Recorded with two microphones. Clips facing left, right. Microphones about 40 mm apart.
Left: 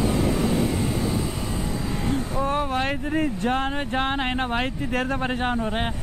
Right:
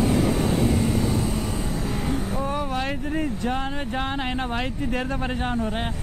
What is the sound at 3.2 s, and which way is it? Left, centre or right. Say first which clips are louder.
Speech: left 3 dB; left.